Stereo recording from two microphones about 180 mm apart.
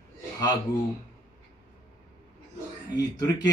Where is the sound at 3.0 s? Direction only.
20° left (ahead or behind).